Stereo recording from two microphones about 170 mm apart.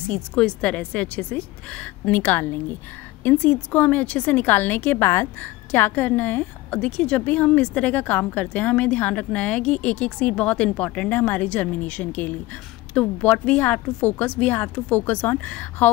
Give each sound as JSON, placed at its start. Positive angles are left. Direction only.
{"t": 0.1, "sound": "a woman's voice", "side_deg": 5}